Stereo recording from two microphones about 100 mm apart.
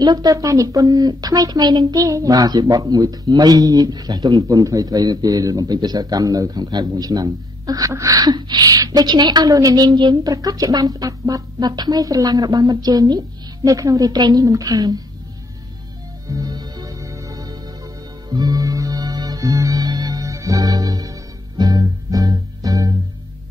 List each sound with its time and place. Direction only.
0.0 s a woman's voice: 40° right (ahead or behind)
10.3 s a woman's voice: 35° right (ahead or behind)
16.3 s music: 40° right (ahead or behind)